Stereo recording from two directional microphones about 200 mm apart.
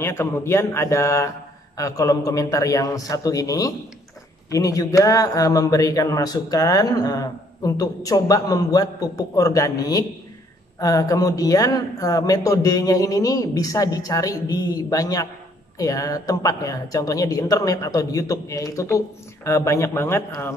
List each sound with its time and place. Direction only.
0.0 s a man's voice: 15° left (ahead or behind)